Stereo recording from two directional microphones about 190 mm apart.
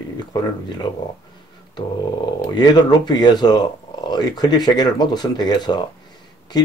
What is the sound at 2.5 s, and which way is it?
Speech, 20° left (ahead or behind).